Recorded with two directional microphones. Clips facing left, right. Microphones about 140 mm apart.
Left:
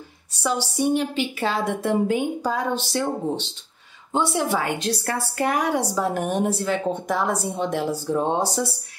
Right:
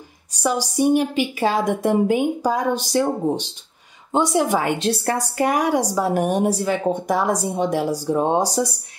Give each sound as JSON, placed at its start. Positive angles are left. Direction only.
{"t": 0.4, "sound": "a woman's voice", "side_deg": -10}
{"t": 5.4, "sound": "a woman's voice", "side_deg": -10}